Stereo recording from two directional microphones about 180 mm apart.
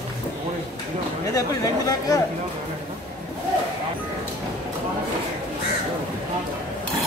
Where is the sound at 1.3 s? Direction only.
20° left (ahead or behind).